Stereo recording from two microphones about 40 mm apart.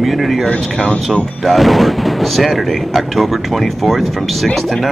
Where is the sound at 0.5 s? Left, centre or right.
Left.